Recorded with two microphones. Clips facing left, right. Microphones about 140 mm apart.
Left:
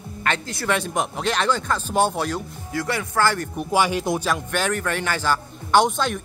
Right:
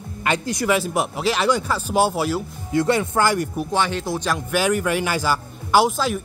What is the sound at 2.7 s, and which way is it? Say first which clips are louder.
Speech: right 5 dB; 25° right (ahead or behind).